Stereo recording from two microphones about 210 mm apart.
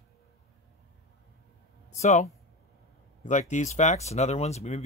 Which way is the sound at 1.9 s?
35° left (ahead or behind).